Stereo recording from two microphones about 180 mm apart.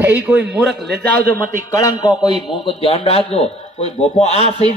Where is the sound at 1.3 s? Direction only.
20° left (ahead or behind).